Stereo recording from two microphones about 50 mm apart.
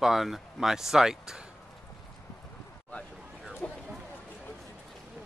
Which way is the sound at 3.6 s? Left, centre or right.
Left.